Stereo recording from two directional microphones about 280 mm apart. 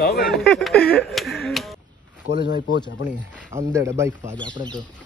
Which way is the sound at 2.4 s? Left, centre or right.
Left.